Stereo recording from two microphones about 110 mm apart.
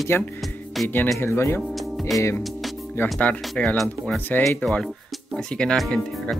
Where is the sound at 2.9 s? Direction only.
15° left (ahead or behind).